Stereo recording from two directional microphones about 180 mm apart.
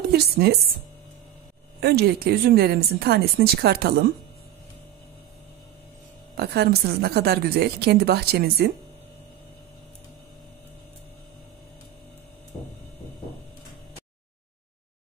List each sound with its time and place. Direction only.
0.1 s a woman's voice: 60° right (ahead or behind)
1.8 s a woman's voice: 60° right (ahead or behind)
6.3 s a woman's voice: 60° right (ahead or behind)